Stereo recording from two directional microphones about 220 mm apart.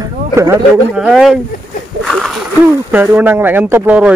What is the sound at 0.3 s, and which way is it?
Speech, 10° right (ahead or behind).